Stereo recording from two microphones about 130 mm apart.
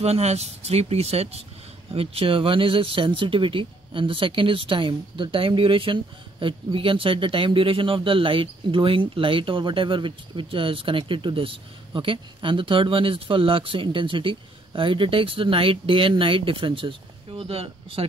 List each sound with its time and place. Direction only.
0.0 s speech: 55° right (ahead or behind)